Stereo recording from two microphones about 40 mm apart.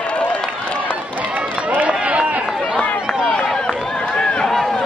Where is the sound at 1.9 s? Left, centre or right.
Right.